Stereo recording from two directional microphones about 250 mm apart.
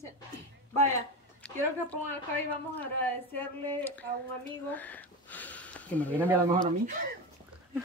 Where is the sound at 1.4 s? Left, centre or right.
Centre.